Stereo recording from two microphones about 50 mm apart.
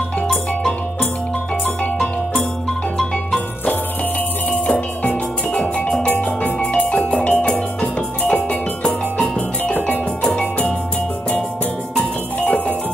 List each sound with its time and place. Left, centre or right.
4.5 s music: left
7.8 s music: left
12.0 s music: left